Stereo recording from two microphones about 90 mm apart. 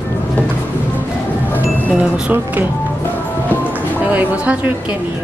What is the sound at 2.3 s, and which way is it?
Speech, 25° right (ahead or behind).